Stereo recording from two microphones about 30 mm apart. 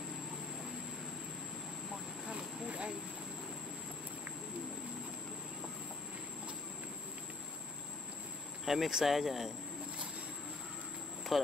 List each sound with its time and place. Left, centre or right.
2.2 s vehicle: right
2.7 s a sound: right
8.6 s speech: centre
11.3 s speech: centre